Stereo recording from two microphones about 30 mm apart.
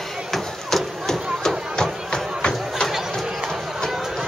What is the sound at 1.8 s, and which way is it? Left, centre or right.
Music, left.